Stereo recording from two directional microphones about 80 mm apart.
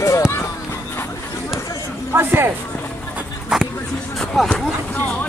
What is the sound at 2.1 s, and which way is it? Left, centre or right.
Speech, right.